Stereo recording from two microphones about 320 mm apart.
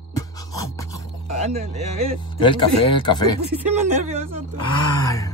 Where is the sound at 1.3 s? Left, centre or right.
Centre.